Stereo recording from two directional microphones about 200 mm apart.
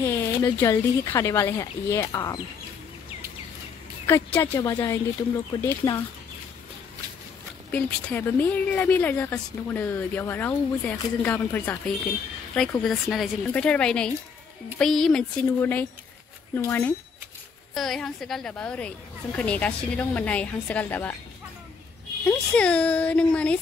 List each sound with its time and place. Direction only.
0.1 s a woman's voice: 15° left (ahead or behind)
4.1 s a woman's voice: 10° left (ahead or behind)
7.7 s a woman's voice: 10° left (ahead or behind)
22.5 s a woman's voice: 5° left (ahead or behind)